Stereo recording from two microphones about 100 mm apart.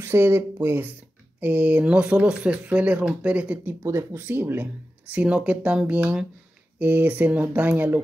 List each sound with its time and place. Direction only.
0.0 s speech: 25° right (ahead or behind)
3.8 s speech: 25° right (ahead or behind)